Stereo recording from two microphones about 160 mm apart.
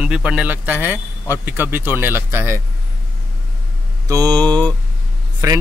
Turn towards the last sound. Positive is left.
turn(degrees=-20)  # may be behind; listen again after turning